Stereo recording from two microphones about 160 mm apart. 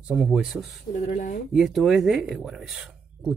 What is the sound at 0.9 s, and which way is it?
Speech, 50° left (ahead or behind).